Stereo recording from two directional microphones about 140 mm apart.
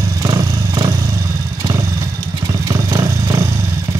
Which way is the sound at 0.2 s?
30° right (ahead or behind).